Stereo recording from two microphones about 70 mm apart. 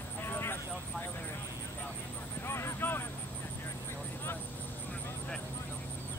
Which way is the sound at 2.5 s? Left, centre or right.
Left.